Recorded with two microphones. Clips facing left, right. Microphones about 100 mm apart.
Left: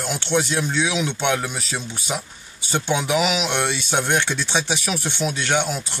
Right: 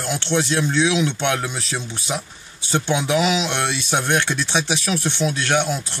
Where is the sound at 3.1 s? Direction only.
15° left (ahead or behind).